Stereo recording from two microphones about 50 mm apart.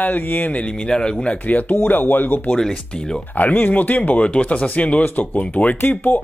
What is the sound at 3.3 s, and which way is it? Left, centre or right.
Speech, left.